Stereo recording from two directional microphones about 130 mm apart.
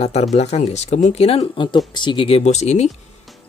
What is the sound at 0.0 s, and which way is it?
Speech, 55° left (ahead or behind).